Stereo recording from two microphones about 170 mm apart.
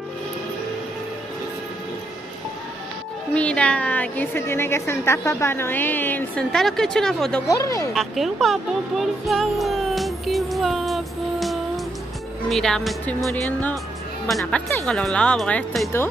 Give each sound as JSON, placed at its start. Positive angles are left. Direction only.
{"t": 3.3, "sound": "a woman's voice", "side_deg": 5}
{"t": 7.4, "sound": "speech", "side_deg": 20}
{"t": 7.9, "sound": "music", "side_deg": 0}
{"t": 12.4, "sound": "a woman's voice", "side_deg": 0}
{"t": 14.9, "sound": "speech", "side_deg": 5}